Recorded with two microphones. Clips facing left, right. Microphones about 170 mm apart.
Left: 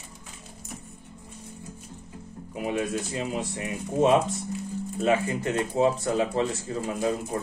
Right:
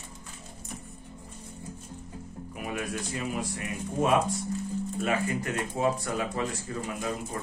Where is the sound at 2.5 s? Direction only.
25° left (ahead or behind).